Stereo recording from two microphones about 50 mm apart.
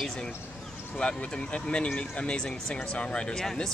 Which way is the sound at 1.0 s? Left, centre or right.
Left.